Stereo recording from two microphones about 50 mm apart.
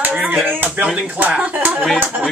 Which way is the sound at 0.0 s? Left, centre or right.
Right.